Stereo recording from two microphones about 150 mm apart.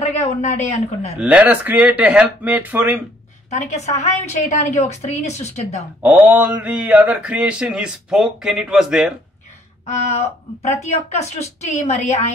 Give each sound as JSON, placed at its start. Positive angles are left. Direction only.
{"t": 0.4, "sound": "speech", "side_deg": 50}
{"t": 1.2, "sound": "speech", "side_deg": -10}
{"t": 3.4, "sound": "speech", "side_deg": 50}
{"t": 6.0, "sound": "speech", "side_deg": -10}
{"t": 9.8, "sound": "speech", "side_deg": 50}